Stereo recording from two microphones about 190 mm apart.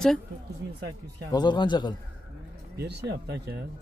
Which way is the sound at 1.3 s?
20° left (ahead or behind).